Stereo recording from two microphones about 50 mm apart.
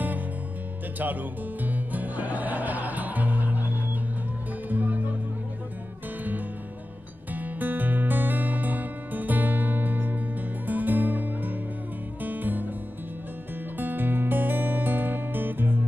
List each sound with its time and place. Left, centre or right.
1.6 s music: right
7.3 s music: right
13.7 s music: right